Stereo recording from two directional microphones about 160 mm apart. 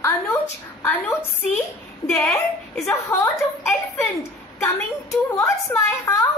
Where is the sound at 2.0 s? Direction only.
20° left (ahead or behind).